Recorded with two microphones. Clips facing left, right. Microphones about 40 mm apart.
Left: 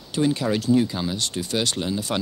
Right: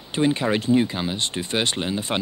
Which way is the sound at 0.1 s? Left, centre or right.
Right.